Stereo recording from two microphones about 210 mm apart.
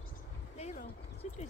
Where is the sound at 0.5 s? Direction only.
30° left (ahead or behind).